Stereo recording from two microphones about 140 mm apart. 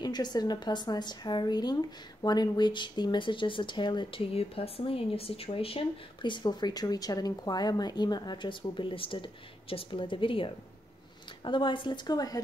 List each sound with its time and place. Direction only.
0.0 s speech: 30° left (ahead or behind)